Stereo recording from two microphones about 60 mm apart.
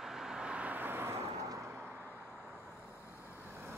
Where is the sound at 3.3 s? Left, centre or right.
Right.